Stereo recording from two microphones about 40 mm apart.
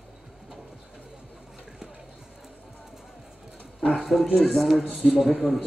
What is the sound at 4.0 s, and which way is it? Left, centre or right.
Speech, centre.